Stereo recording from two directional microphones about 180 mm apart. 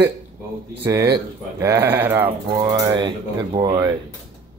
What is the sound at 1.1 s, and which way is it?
Speech, 15° right (ahead or behind).